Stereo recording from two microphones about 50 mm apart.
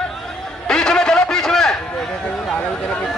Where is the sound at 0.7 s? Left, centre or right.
Centre.